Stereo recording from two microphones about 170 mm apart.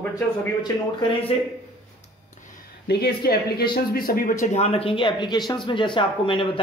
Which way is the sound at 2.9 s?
70° left (ahead or behind).